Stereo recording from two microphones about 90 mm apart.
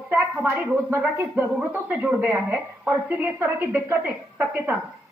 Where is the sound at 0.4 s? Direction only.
25° right (ahead or behind).